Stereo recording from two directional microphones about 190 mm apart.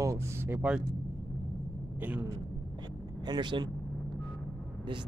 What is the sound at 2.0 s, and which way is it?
Speech, 10° right (ahead or behind).